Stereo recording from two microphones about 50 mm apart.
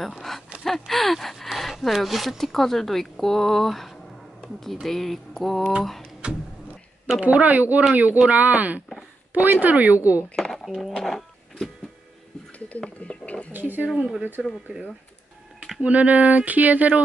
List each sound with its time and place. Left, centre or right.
0.7 s speech: centre
4.8 s typing: centre
6.2 s vehicle: right
7.2 s a woman's voice: right
10.3 s a sound: centre
11.0 s typing: centre
12.5 s a sound: left
13.5 s speech: right
14.4 s speech: centre
15.8 s a sound: right